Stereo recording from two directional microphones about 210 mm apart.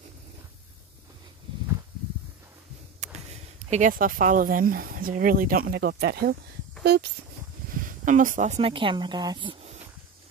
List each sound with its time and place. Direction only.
3.7 s speech: 40° right (ahead or behind)
7.7 s speech: 40° right (ahead or behind)